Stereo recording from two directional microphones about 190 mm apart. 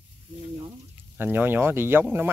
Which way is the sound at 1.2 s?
10° right (ahead or behind).